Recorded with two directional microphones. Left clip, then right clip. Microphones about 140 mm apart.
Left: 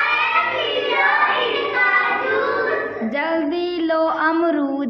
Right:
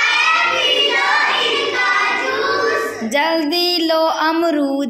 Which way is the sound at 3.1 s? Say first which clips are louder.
Right 5 dB; 15° right (ahead or behind).